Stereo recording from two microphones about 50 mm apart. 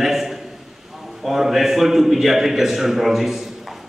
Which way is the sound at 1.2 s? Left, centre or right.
Centre.